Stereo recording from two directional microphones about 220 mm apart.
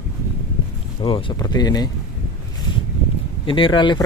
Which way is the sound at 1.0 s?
25° left (ahead or behind).